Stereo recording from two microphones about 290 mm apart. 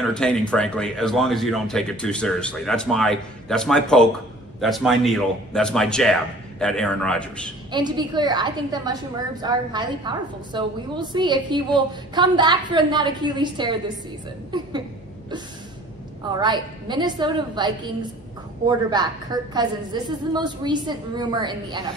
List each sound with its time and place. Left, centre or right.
0.1 s speech: centre
7.7 s a woman's voice: centre
16.3 s a woman's voice: centre